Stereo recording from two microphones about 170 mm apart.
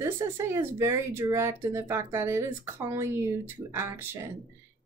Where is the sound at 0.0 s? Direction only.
15° right (ahead or behind).